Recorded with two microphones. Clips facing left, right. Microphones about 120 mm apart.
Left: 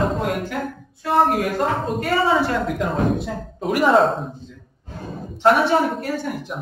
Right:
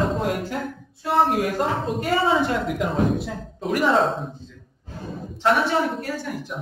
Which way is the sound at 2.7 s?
5° right (ahead or behind).